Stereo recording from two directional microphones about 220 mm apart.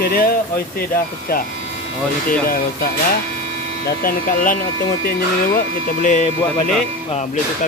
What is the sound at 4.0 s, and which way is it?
Speech, 40° left (ahead or behind).